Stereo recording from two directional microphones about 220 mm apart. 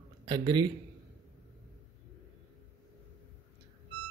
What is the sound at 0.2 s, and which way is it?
Speech, 20° right (ahead or behind).